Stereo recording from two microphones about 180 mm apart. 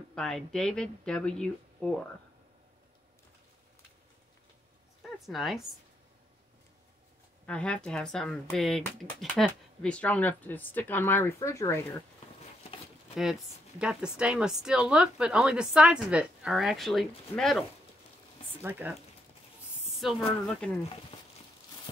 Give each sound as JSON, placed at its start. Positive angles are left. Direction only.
{"t": 0.1, "sound": "a woman's voice", "side_deg": 5}
{"t": 5.2, "sound": "a woman's voice", "side_deg": 0}
{"t": 7.4, "sound": "speech", "side_deg": 5}
{"t": 13.1, "sound": "a woman's voice", "side_deg": -5}
{"t": 18.6, "sound": "speech", "side_deg": -10}
{"t": 20.0, "sound": "a woman's voice", "side_deg": 0}